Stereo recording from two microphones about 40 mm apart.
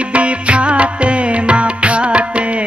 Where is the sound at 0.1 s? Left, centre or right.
Right.